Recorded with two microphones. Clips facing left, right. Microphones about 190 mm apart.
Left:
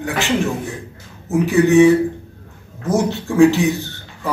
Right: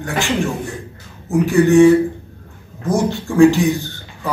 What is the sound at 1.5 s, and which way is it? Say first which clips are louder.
Speech: right 1 dB; centre (ahead or behind).